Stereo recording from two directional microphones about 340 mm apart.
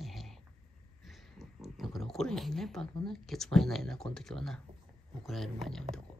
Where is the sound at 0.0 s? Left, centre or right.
Centre.